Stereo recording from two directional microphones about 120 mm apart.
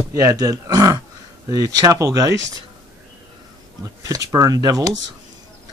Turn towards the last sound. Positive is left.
turn(degrees=-30)  # may be behind; listen again after turning